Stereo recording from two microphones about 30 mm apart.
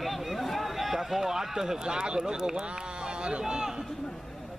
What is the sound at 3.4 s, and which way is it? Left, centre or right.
Speech, right.